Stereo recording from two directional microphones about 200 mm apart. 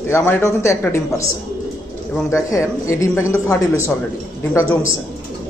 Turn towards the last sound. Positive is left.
turn(degrees=15)  # may be behind; listen again after turning